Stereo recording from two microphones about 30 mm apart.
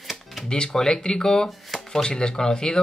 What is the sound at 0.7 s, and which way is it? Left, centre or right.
Speech, centre.